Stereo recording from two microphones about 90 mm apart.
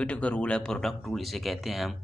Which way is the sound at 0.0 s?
15° left (ahead or behind).